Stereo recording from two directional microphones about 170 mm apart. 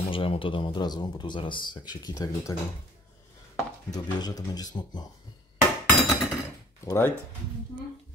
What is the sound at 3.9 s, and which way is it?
Speech, 20° left (ahead or behind).